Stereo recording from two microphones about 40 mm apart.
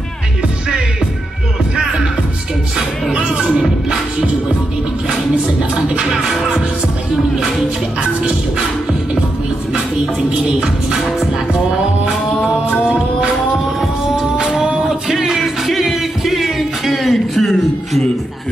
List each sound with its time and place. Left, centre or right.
3.1 s music: right
5.9 s music: right
6.2 s music: centre
8.0 s music: right
14.3 s music: centre